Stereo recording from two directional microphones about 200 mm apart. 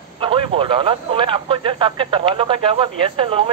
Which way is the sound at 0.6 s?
25° right (ahead or behind).